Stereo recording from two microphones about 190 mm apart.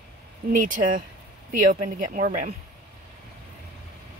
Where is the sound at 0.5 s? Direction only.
45° right (ahead or behind).